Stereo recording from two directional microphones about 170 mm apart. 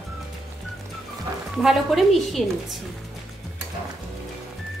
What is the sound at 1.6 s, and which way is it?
A woman's voice, centre (ahead or behind).